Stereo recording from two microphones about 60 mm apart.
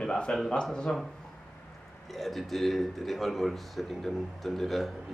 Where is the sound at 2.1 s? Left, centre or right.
Centre.